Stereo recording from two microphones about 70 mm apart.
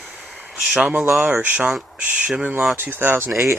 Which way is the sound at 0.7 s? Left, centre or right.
Centre.